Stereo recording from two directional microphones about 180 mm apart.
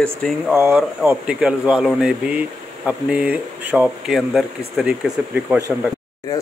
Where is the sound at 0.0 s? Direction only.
5° left (ahead or behind).